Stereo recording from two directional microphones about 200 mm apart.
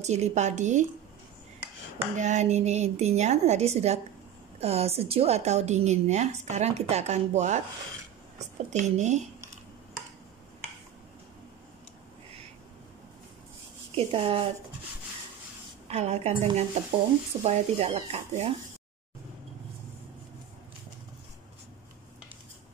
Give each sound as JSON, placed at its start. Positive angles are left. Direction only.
{"t": 0.0, "sound": "a woman's voice", "side_deg": -35}
{"t": 2.1, "sound": "a woman's voice", "side_deg": -35}
{"t": 8.6, "sound": "a woman's voice", "side_deg": -35}
{"t": 13.9, "sound": "speech", "side_deg": -25}
{"t": 15.9, "sound": "a woman's voice", "side_deg": -35}